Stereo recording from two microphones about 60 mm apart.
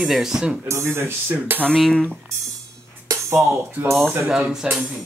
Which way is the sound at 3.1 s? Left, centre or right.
Right.